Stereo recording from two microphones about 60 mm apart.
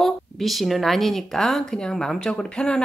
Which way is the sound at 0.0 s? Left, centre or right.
Centre.